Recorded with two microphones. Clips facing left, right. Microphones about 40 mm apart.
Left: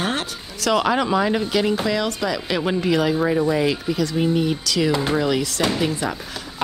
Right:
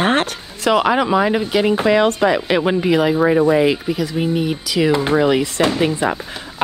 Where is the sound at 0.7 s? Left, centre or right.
Centre.